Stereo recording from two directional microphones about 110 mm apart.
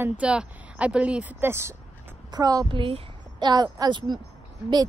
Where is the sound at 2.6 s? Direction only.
50° right (ahead or behind).